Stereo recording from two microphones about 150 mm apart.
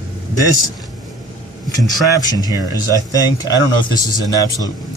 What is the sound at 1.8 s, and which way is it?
Speech, 25° left (ahead or behind).